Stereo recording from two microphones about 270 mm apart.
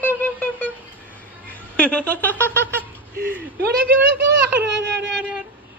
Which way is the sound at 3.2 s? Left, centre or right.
Right.